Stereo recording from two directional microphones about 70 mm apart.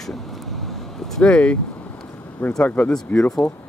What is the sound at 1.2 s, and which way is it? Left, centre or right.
Speech, centre.